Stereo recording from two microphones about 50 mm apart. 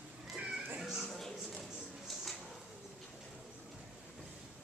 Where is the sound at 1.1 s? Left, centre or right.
Centre.